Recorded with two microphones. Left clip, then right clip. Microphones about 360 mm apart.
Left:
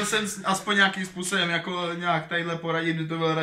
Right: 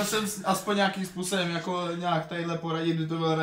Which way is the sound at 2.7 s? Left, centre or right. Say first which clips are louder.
Left 2 dB; centre.